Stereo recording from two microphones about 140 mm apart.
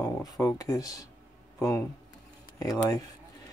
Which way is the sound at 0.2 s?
25° left (ahead or behind).